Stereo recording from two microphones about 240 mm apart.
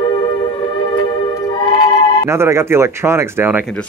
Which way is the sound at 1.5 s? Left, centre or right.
Centre.